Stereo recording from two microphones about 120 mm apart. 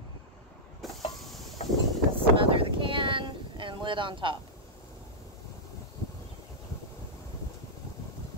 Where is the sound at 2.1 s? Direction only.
50° right (ahead or behind).